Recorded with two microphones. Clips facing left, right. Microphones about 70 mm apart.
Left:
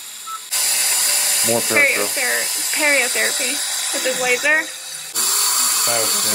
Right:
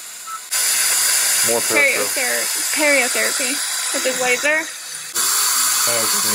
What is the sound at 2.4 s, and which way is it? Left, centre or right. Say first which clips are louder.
Speech: right 2 dB; right.